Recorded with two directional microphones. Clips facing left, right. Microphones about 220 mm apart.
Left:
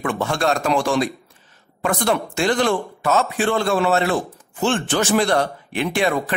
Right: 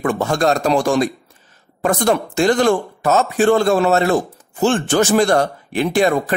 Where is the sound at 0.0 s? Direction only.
40° right (ahead or behind).